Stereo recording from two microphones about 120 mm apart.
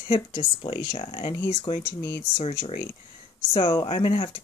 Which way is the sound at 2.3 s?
65° left (ahead or behind).